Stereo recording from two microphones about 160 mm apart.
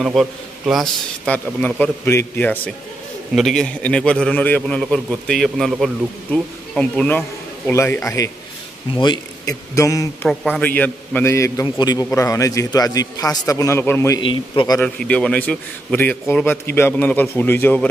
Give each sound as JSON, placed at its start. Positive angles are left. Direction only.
{"t": 0.0, "sound": "a man's voice", "side_deg": 0}
{"t": 8.9, "sound": "a man's voice", "side_deg": 30}
{"t": 14.2, "sound": "a man's voice", "side_deg": 30}
{"t": 14.8, "sound": "a man's voice", "side_deg": 5}